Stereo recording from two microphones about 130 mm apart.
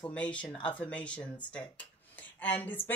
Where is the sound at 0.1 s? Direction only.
10° left (ahead or behind).